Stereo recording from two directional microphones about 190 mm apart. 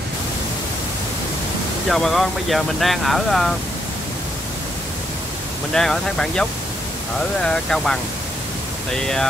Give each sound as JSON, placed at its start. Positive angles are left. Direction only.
{"t": 1.9, "sound": "speech", "side_deg": 0}
{"t": 5.7, "sound": "speech", "side_deg": 0}
{"t": 7.4, "sound": "speech", "side_deg": 5}